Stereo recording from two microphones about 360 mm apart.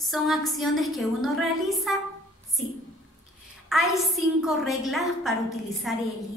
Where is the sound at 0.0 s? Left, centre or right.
Centre.